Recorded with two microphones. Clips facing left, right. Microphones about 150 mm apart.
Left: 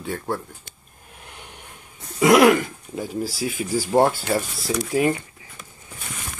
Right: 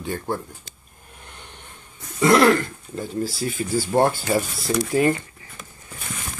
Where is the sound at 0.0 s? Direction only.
Centre (ahead or behind).